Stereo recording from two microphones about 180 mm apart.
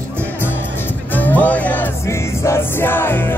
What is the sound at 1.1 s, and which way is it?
Music, 10° left (ahead or behind).